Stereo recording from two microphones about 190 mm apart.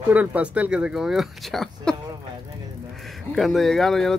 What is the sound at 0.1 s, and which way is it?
Speech, 10° right (ahead or behind).